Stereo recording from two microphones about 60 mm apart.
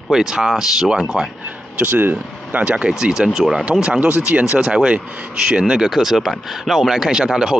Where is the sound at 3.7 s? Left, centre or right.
Right.